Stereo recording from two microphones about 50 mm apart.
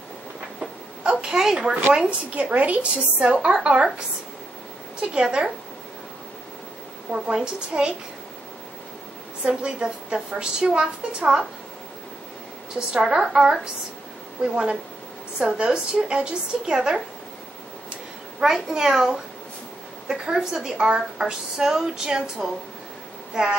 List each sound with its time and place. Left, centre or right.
1.0 s a sound: centre
2.0 s a woman's voice: right
5.1 s speech: right
7.1 s a woman's voice: centre
9.4 s a woman's voice: right
12.7 s a woman's voice: centre
18.4 s a woman's voice: centre